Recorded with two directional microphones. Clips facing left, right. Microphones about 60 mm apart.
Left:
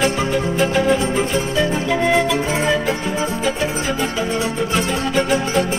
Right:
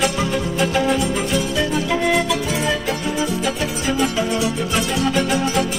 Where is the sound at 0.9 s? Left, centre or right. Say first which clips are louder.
Left 1 dB; left.